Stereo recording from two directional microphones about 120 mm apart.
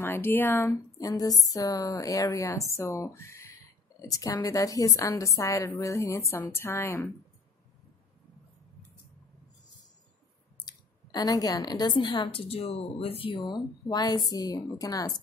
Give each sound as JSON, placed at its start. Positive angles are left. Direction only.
{"t": 0.0, "sound": "a woman's voice", "side_deg": 20}
{"t": 10.6, "sound": "speech", "side_deg": 35}